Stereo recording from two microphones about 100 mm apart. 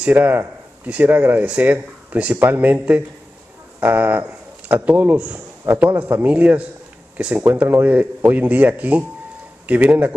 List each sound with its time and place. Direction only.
0.0 s a man's voice: 20° right (ahead or behind)